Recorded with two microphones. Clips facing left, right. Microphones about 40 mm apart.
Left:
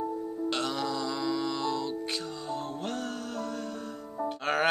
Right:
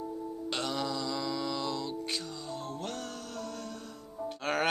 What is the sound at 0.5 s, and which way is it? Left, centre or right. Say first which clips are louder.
Music: left 2 dB; centre.